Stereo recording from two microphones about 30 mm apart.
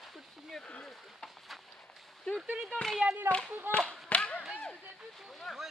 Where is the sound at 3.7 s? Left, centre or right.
Right.